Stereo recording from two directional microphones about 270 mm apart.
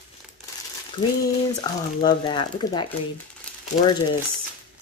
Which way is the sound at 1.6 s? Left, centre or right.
Centre.